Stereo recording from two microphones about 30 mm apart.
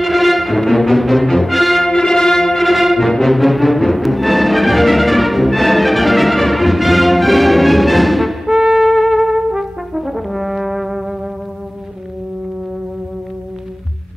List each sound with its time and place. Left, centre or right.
0.0 s music: centre
1.9 s music: centre
8.5 s music: centre
8.7 s trumpet: centre
9.3 s brass instrument: centre